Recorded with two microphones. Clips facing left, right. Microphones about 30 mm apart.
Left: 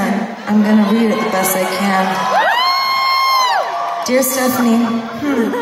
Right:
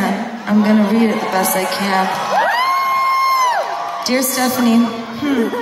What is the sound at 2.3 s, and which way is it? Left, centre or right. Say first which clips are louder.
Music: left 1 dB; left.